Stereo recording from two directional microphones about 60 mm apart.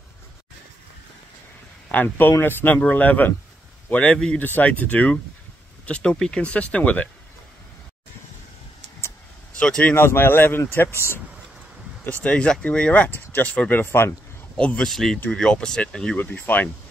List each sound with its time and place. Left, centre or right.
1.9 s speech: left
3.9 s speech: centre
4.4 s speech: left
9.6 s speech: centre
9.9 s speech: left
12.1 s speech: left
13.1 s speech: left
14.6 s speech: centre
14.9 s speech: centre
16.3 s speech: left